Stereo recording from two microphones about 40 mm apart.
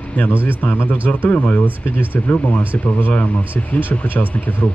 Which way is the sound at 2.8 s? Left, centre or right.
Left.